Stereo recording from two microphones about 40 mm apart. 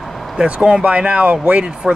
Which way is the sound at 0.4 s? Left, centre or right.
Right.